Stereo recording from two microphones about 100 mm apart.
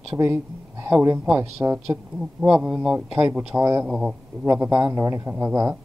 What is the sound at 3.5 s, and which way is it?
Speech, 25° right (ahead or behind).